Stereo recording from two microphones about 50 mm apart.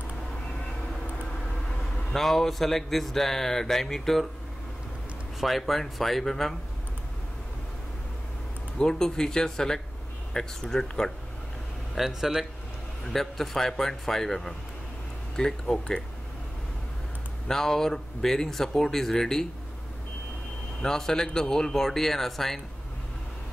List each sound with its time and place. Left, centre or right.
2.1 s speech: centre
5.6 s speech: centre
8.7 s speech: centre
11.9 s speech: centre
13.1 s speech: centre
17.5 s speech: centre
20.8 s speech: centre